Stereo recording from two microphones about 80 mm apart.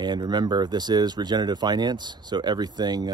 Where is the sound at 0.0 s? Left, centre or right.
Right.